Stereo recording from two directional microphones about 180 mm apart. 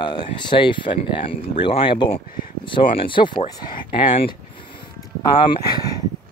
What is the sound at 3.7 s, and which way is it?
Speech, 50° left (ahead or behind).